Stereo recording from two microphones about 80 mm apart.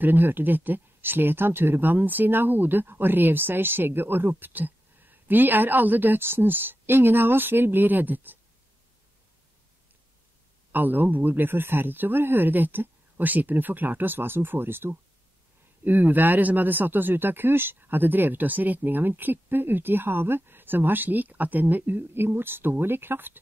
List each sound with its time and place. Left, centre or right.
0.0 s speech: right
10.7 s speech: right